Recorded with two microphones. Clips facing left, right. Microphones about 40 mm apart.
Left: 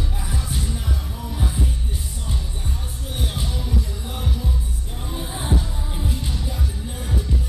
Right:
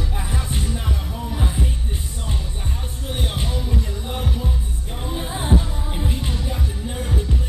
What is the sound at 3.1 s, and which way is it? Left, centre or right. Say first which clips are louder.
Basketball bounce: right 2 dB; right.